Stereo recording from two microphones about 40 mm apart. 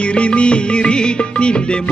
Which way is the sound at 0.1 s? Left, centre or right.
Left.